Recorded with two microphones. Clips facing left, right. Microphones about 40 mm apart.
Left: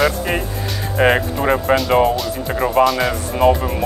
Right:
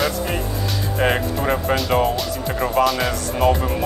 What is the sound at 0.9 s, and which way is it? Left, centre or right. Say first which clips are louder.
Speech: left 5 dB; centre.